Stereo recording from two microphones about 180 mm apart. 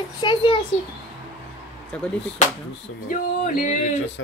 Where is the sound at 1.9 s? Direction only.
5° left (ahead or behind).